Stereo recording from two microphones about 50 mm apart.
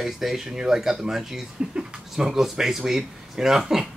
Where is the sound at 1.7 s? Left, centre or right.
Centre.